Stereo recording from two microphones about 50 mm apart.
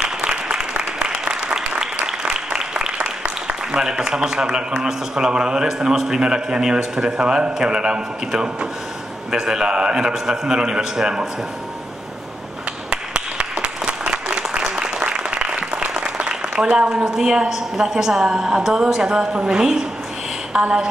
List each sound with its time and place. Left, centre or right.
0.0 s applause: centre
3.7 s a man's voice: centre
12.9 s applause: centre
20.5 s a man's voice: centre